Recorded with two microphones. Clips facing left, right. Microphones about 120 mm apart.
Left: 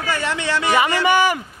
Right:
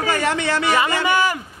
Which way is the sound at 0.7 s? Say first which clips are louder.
Left 3 dB; 15° left (ahead or behind).